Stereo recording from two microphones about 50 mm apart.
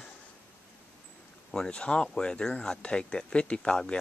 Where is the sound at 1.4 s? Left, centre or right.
Centre.